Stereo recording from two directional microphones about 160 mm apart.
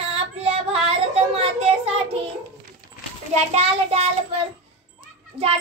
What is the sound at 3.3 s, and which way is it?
Child singing, 40° right (ahead or behind).